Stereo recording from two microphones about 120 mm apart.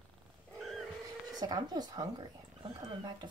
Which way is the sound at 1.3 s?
35° right (ahead or behind).